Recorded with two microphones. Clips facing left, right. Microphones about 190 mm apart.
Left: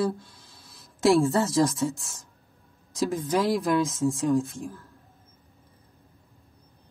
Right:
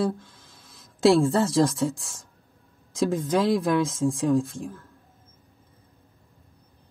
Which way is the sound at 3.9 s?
30° right (ahead or behind).